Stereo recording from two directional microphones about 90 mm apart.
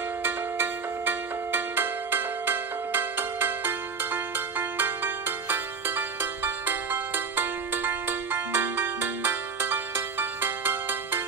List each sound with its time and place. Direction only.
0.2 s music: 20° right (ahead or behind)